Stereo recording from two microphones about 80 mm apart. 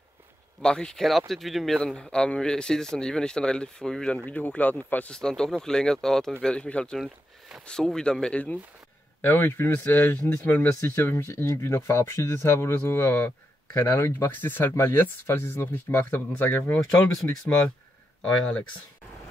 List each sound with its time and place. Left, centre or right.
0.6 s speech: centre
1.8 s speech: centre
5.1 s speech: centre
9.2 s speech: left
13.8 s speech: left
14.1 s speech: left
18.2 s speech: centre